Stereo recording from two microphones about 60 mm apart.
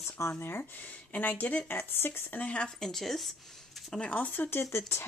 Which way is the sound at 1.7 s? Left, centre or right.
Left.